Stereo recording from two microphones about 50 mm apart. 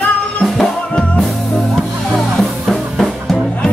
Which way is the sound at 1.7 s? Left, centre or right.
Centre.